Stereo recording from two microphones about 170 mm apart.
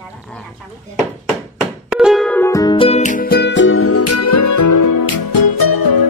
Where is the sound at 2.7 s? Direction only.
35° left (ahead or behind).